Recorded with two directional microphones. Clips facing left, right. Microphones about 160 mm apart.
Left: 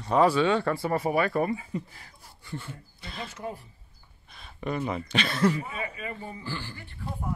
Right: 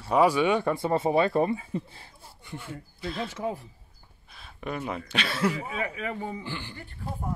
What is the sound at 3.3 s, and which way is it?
Speech, 90° right.